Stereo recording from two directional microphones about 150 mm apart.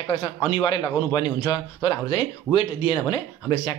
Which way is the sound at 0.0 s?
30° left (ahead or behind).